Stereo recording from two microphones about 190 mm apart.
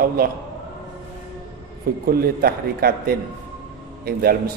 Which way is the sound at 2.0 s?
50° right (ahead or behind).